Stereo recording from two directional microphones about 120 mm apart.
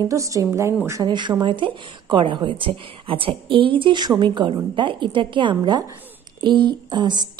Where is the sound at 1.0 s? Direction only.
40° right (ahead or behind).